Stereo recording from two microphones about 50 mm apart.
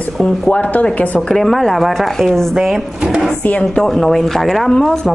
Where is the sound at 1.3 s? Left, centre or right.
Centre.